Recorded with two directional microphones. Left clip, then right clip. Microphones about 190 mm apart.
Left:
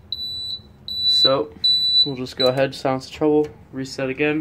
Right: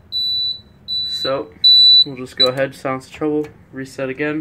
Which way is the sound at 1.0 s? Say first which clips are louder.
Left 6 dB; 15° left (ahead or behind).